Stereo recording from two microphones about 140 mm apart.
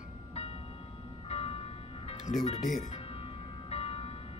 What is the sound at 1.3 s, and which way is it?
Music, 45° left (ahead or behind).